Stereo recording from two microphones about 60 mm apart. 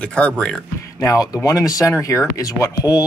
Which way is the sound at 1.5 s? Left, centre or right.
Left.